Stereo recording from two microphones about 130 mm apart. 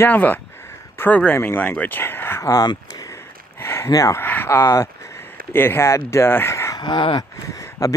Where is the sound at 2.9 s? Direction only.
25° left (ahead or behind).